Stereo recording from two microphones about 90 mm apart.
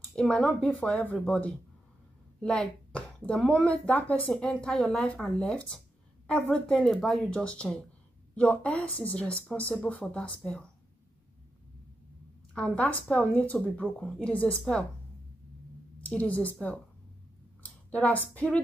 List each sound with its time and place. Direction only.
0.1 s speech: 10° left (ahead or behind)
2.4 s a sound: 10° left (ahead or behind)
3.4 s speech: 15° left (ahead or behind)
12.5 s speech: 15° left (ahead or behind)
13.8 s speech: 5° left (ahead or behind)
16.0 s a woman's voice: 15° left (ahead or behind)
17.6 s speech: 15° left (ahead or behind)